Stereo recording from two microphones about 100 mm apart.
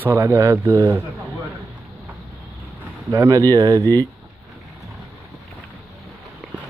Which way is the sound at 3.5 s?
45° right (ahead or behind).